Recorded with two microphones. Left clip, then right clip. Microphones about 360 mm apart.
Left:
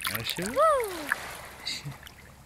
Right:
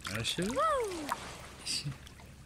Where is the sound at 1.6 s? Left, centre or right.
Centre.